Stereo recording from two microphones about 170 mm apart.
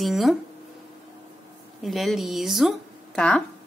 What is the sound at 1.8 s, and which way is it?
A woman's voice, centre (ahead or behind).